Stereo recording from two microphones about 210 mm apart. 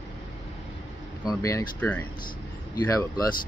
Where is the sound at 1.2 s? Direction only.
15° left (ahead or behind).